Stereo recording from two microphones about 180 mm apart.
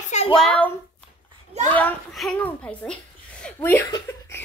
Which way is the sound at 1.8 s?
5° left (ahead or behind).